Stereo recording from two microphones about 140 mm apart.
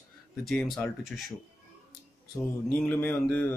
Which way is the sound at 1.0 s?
Centre (ahead or behind).